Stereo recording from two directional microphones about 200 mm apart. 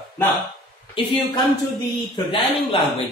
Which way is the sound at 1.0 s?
25° left (ahead or behind).